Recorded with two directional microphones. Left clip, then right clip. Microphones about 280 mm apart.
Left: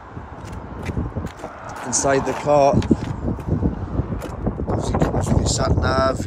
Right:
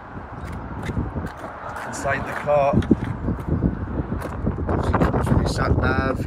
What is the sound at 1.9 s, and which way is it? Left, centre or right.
Speech, centre.